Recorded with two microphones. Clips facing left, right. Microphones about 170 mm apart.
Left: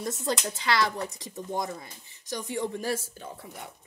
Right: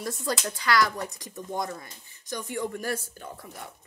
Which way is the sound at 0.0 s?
25° left (ahead or behind).